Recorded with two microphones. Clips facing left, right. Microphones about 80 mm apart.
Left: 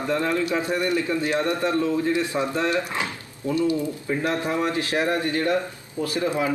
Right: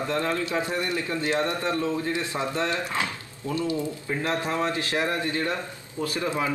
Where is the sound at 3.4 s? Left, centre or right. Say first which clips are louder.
Left 5 dB; right.